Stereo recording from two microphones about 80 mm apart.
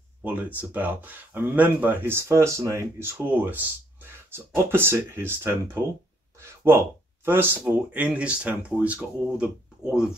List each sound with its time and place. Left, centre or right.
0.2 s speech: right